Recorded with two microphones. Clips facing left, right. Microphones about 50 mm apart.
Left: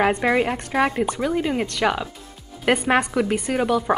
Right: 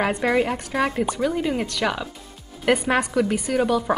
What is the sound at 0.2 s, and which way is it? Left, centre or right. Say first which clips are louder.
A woman's voice: left 1 dB; centre.